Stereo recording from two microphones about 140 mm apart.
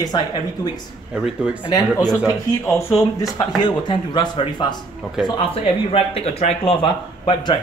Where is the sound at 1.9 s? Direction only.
25° left (ahead or behind).